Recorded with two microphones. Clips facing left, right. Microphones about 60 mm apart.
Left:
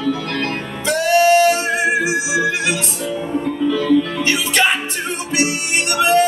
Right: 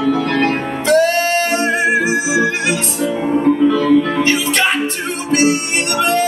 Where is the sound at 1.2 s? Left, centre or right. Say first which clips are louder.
Left 4 dB; right.